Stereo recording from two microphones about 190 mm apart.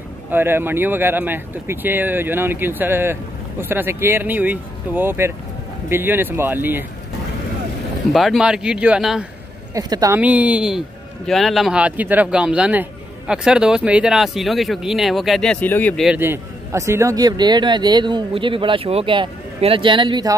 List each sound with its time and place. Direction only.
0.3 s speech: 10° right (ahead or behind)
8.1 s speech: centre (ahead or behind)
9.8 s speech: 20° right (ahead or behind); by 16.1 s 10° left (ahead or behind)
16.1 s a man's voice: 10° right (ahead or behind)